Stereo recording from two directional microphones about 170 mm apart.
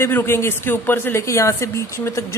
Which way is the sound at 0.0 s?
15° left (ahead or behind).